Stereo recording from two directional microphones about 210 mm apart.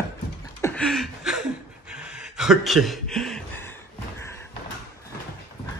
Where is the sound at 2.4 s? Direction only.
Centre (ahead or behind).